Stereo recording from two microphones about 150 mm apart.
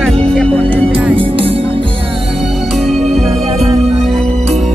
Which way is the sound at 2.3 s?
Centre (ahead or behind).